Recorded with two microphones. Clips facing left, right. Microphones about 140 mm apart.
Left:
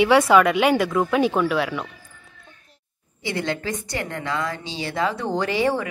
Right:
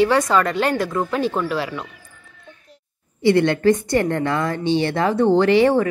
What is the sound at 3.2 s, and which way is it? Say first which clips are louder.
A woman's voice: right 11 dB; 60° right (ahead or behind).